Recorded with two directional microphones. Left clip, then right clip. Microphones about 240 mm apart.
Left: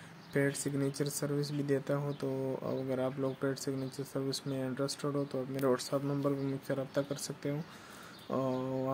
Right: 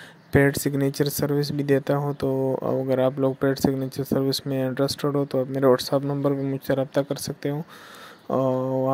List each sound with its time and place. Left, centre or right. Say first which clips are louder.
0.3 s speech: right 13 dB; right